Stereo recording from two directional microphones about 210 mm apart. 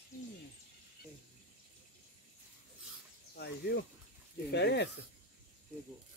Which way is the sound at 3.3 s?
50° left (ahead or behind).